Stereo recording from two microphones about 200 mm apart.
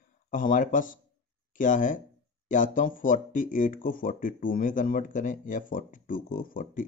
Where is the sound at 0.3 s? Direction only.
40° left (ahead or behind).